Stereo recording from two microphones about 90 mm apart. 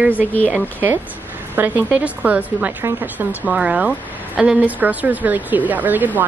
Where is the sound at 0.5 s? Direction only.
20° right (ahead or behind).